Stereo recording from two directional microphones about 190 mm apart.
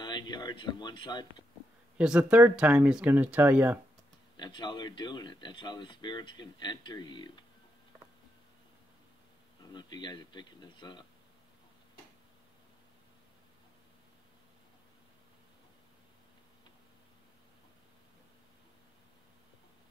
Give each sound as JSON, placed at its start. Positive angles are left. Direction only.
{"t": 0.0, "sound": "a sound", "side_deg": 25}
{"t": 2.0, "sound": "speech", "side_deg": -5}
{"t": 4.4, "sound": "speech", "side_deg": 25}
{"t": 9.7, "sound": "speech", "side_deg": 25}